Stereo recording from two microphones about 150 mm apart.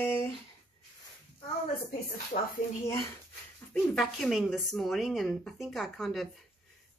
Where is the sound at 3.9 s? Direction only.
Centre (ahead or behind).